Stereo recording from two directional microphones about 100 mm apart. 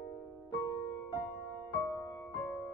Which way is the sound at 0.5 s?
45° left (ahead or behind).